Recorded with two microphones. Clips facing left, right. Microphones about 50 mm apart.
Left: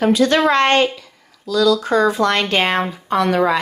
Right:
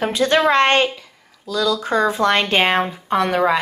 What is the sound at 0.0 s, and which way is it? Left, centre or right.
Speech, right.